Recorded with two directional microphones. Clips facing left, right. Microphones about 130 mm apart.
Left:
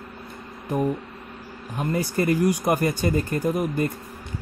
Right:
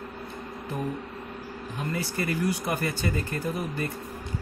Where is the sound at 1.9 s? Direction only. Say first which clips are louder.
Left 8 dB; 40° left (ahead or behind).